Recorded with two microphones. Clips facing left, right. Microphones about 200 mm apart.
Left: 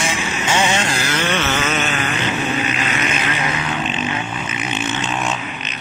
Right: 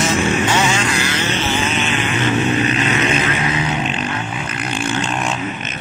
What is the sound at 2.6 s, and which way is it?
Vehicle, 35° right (ahead or behind).